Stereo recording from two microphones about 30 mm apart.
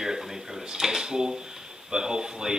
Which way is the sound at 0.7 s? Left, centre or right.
Centre.